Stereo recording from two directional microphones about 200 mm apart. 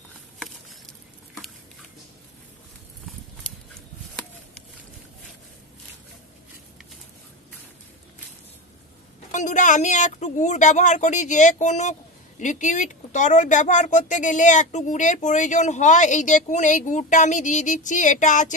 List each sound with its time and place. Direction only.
3.4 s horse: 5° left (ahead or behind)
9.3 s speech: 40° left (ahead or behind)